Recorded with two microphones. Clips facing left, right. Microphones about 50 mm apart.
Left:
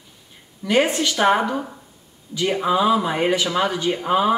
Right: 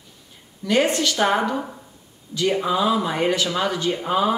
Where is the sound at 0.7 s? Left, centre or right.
Centre.